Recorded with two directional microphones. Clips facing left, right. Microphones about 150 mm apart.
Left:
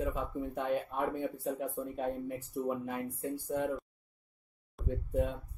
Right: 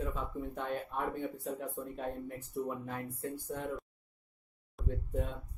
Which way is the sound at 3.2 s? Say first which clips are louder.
Left 6 dB; 20° left (ahead or behind).